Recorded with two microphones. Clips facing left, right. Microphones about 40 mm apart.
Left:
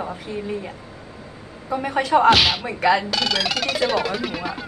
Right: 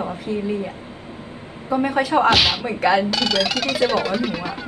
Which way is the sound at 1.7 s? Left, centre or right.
Centre.